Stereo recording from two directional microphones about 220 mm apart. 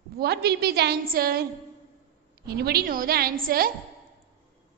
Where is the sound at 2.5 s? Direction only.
45° right (ahead or behind).